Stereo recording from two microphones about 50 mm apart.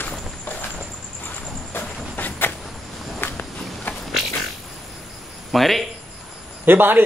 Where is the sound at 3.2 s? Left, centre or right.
Left.